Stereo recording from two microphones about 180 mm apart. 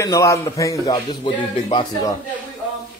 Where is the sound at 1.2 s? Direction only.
30° left (ahead or behind).